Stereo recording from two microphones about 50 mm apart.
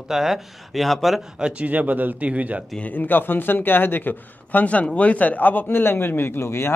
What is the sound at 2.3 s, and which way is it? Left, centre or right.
Speech, right.